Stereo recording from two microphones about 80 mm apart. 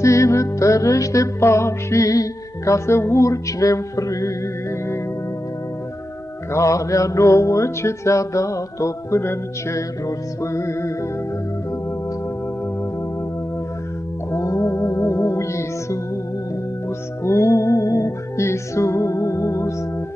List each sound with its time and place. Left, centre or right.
0.0 s music: left
6.5 s music: left
14.3 s music: left
17.2 s music: left